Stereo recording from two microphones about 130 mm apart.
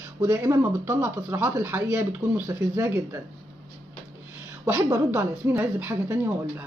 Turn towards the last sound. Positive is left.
turn(degrees=-15)  # may be behind; listen again after turning